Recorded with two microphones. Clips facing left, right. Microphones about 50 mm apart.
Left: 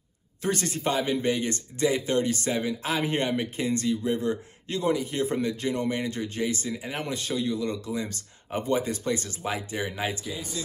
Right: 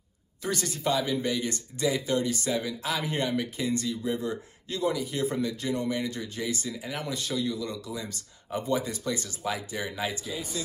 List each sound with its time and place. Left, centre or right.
0.4 s speech: left
10.2 s speech: centre